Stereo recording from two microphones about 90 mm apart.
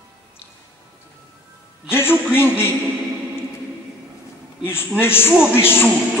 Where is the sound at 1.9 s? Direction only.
25° left (ahead or behind).